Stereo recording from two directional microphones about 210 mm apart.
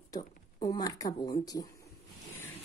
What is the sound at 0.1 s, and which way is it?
A woman's voice, 20° left (ahead or behind).